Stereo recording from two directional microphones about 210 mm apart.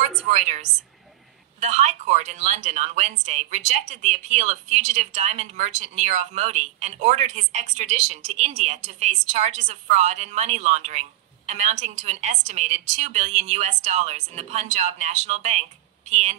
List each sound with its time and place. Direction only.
0.3 s speech: 35° right (ahead or behind)